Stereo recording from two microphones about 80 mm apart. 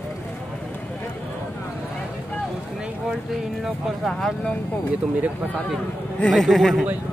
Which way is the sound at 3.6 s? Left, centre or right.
Centre.